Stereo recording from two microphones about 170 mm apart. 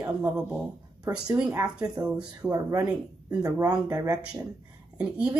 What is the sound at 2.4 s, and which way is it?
Speech, 20° right (ahead or behind).